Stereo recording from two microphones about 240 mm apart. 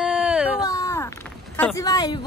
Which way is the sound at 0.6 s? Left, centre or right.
Centre.